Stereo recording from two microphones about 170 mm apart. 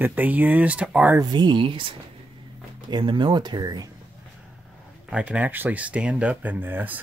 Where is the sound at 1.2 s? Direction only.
25° right (ahead or behind).